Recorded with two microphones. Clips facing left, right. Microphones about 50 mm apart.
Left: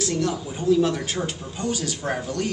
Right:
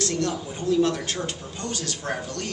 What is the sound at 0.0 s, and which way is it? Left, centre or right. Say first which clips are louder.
A man's voice: left 1 dB; centre.